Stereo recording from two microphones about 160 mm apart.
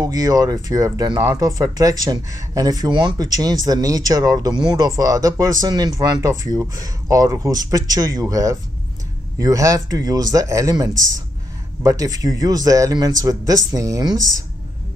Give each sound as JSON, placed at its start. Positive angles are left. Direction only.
{"t": 0.0, "sound": "speech", "side_deg": -25}